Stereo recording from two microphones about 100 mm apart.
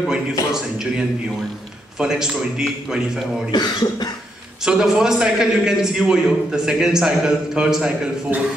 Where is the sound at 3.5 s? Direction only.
45° left (ahead or behind).